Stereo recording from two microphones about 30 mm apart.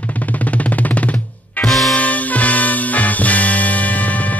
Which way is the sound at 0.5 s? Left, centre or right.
Left.